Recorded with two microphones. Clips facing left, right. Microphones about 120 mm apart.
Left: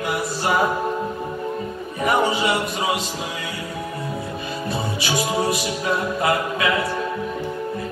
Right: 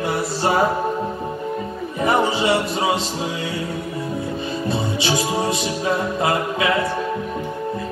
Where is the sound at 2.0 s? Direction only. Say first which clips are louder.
Right 1 dB; 30° right (ahead or behind).